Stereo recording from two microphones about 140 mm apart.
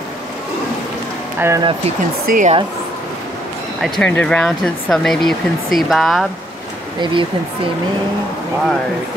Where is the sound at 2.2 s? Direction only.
70° right (ahead or behind).